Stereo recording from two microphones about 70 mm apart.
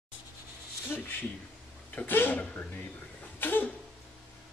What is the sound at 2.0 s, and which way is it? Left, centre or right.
Speech, left.